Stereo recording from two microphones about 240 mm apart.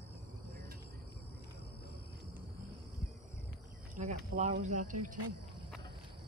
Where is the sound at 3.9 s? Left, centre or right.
Right.